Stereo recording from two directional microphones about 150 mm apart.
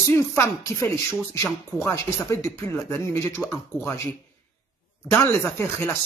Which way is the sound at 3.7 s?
15° right (ahead or behind).